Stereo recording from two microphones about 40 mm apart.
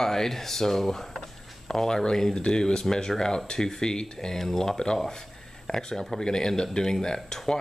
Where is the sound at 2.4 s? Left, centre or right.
Centre.